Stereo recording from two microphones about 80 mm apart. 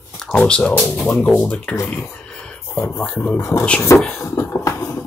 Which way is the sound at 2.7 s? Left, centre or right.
Left.